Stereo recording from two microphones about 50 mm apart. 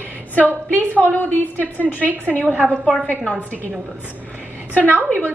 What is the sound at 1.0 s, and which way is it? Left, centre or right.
A woman's voice, left.